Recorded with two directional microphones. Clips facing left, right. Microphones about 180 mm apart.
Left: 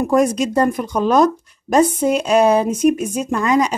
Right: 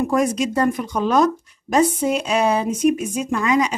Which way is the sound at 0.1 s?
40° left (ahead or behind).